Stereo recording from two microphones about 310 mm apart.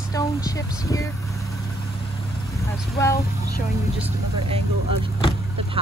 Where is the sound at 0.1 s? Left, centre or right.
Centre.